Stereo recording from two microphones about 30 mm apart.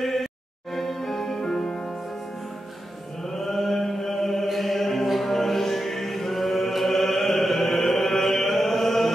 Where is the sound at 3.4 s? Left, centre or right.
Centre.